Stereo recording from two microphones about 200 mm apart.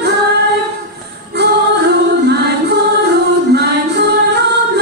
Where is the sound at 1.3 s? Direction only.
55° right (ahead or behind).